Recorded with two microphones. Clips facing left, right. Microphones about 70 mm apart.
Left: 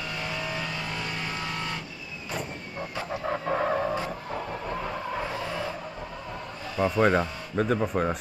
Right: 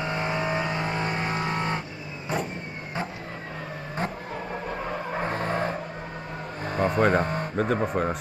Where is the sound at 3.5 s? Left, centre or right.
Left.